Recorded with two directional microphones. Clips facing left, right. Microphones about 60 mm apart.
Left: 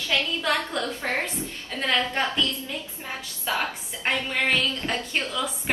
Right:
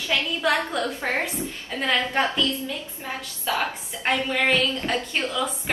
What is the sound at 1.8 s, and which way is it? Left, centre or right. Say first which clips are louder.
Speech: right 2 dB; centre.